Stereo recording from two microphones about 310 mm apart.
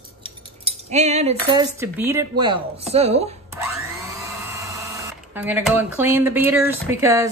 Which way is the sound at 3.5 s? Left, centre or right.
Centre.